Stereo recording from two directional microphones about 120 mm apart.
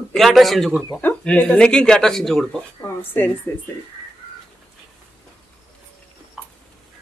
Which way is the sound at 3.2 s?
15° left (ahead or behind).